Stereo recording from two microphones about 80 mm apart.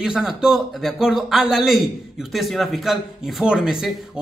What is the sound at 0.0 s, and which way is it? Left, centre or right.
A man's voice, centre.